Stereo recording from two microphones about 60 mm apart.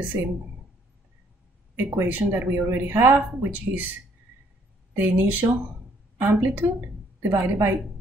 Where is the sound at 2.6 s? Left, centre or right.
Right.